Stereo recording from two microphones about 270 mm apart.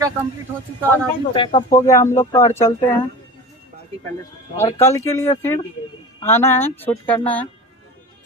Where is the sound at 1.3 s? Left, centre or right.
Centre.